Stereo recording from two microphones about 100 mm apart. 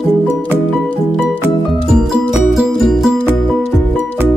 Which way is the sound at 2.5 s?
Centre (ahead or behind).